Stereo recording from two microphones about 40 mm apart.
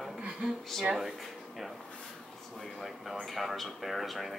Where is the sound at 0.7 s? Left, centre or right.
Centre.